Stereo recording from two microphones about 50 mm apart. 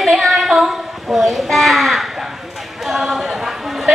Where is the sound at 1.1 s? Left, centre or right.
Centre.